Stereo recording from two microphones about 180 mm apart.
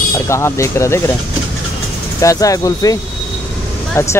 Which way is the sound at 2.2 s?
20° left (ahead or behind).